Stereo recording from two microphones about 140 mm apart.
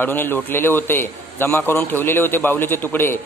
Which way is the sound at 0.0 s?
15° left (ahead or behind).